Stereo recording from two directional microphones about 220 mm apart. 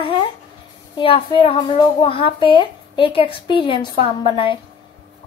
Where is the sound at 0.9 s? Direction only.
25° left (ahead or behind).